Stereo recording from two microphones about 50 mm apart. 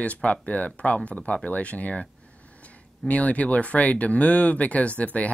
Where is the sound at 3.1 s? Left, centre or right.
Left.